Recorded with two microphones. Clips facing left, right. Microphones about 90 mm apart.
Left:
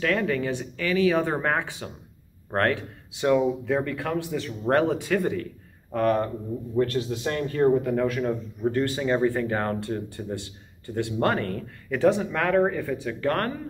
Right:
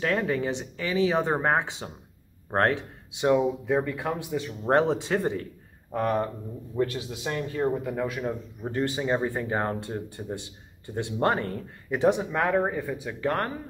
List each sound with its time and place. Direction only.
0.0 s speech: 25° right (ahead or behind)
5.9 s a man's voice: 15° right (ahead or behind)